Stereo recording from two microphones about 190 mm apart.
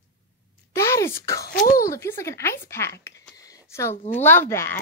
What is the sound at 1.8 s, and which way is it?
Speech, 15° left (ahead or behind).